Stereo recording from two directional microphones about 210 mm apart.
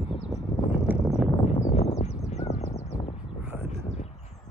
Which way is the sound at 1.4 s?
30° left (ahead or behind).